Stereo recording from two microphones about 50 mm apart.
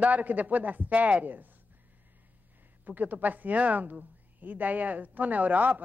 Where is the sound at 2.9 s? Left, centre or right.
Right.